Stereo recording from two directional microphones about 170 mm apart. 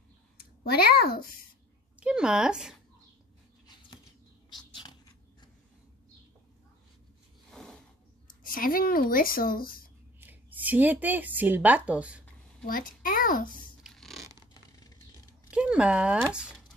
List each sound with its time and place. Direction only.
0.7 s speech: 65° left (ahead or behind)
2.0 s speech: 5° right (ahead or behind)
7.5 s a sound: 5° left (ahead or behind)
8.5 s speech: 55° left (ahead or behind)
10.2 s speech: 10° right (ahead or behind)
12.6 s speech: 55° left (ahead or behind)
13.8 s a sound: centre (ahead or behind)
15.5 s speech: 5° right (ahead or behind)